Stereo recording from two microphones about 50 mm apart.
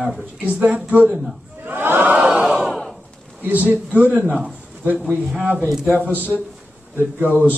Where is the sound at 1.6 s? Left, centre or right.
Right.